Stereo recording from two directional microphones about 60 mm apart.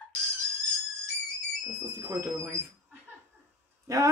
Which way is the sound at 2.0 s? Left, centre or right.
Right.